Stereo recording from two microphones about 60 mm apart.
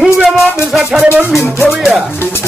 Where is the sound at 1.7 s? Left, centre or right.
Centre.